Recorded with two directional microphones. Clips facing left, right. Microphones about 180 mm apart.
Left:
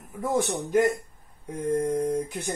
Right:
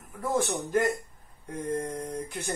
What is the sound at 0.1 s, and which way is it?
Speech, 20° left (ahead or behind).